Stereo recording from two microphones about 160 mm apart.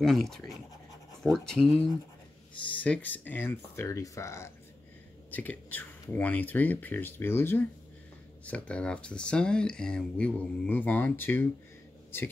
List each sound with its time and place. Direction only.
0.0 s speech: centre (ahead or behind)
2.8 s speech: 10° left (ahead or behind)